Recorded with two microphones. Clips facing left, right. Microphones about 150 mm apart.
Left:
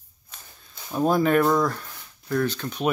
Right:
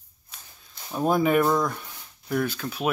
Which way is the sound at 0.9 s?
5° right (ahead or behind).